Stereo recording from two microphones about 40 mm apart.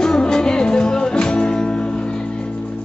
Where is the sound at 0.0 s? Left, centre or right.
Centre.